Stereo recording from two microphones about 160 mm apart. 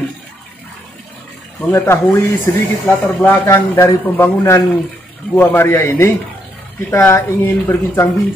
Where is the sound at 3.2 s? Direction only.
15° left (ahead or behind).